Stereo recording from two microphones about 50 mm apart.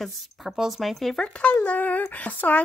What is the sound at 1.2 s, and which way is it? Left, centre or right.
Speech, left.